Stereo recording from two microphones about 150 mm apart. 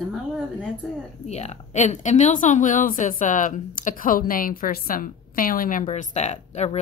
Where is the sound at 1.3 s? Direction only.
45° left (ahead or behind).